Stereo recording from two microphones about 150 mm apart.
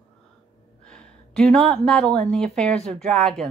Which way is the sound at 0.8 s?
5° left (ahead or behind).